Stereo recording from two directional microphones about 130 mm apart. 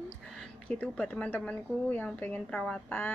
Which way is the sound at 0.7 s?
10° left (ahead or behind).